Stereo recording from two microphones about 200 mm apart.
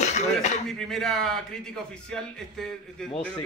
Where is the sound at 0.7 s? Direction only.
Centre (ahead or behind).